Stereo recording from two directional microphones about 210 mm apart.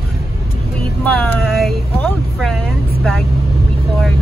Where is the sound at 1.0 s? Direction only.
5° left (ahead or behind).